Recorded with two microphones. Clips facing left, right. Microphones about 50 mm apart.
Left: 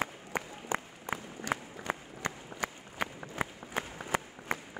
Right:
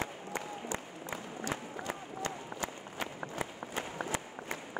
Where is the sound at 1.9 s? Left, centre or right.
Left.